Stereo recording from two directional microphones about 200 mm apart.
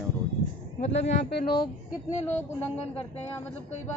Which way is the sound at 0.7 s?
30° left (ahead or behind).